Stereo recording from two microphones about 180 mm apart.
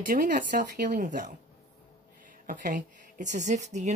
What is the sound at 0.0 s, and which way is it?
Speech, 50° right (ahead or behind).